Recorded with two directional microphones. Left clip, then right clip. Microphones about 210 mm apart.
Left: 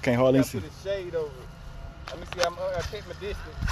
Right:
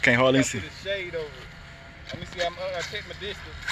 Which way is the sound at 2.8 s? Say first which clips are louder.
Right 2 dB; 15° left (ahead or behind).